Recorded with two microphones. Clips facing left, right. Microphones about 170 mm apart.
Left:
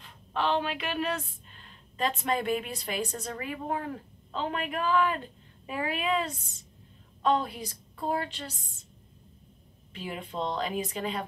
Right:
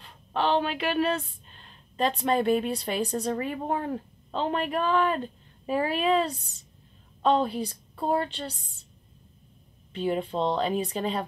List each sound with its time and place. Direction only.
0.0 s a woman's voice: 35° right (ahead or behind)
9.9 s speech: 30° right (ahead or behind)